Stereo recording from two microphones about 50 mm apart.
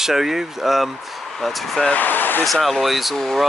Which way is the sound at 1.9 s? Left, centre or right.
Left.